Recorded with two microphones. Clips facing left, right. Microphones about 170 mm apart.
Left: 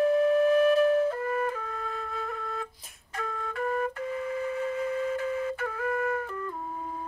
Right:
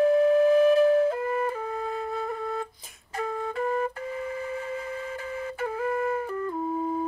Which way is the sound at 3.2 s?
25° right (ahead or behind).